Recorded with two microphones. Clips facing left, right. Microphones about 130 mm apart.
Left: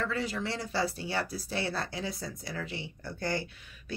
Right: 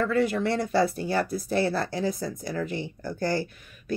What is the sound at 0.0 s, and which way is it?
A woman's voice, 55° right (ahead or behind).